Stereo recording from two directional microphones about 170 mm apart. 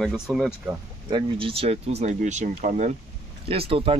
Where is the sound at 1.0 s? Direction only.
30° right (ahead or behind); by 2.9 s 45° right (ahead or behind).